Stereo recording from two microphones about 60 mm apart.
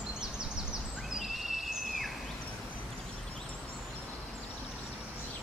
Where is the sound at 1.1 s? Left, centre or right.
Centre.